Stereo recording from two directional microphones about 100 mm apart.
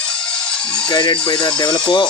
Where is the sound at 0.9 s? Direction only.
50° left (ahead or behind).